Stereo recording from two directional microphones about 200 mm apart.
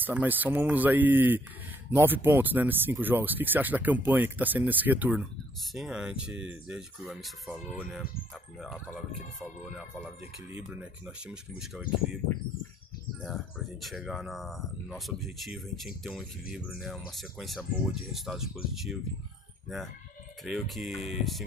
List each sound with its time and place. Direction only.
0.0 s speech: 10° right (ahead or behind)
13.2 s speech: centre (ahead or behind)
20.4 s speech: centre (ahead or behind)